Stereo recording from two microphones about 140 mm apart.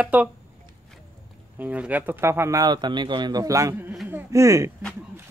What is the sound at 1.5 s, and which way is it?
A child's voice, 10° right (ahead or behind).